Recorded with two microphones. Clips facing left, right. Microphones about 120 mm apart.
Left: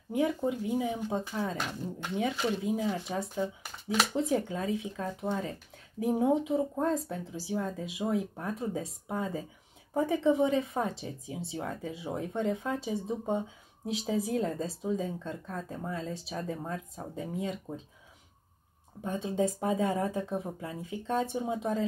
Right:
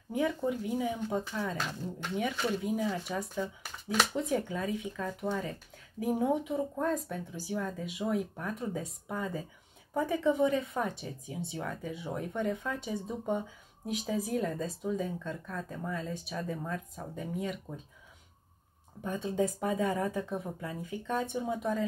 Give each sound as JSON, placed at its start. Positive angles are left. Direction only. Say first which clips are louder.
{"t": 0.1, "sound": "a woman's voice", "louder": "left 2 dB", "side_deg": 20}
{"t": 19.0, "sound": "a woman's voice", "louder": "left 1 dB", "side_deg": 25}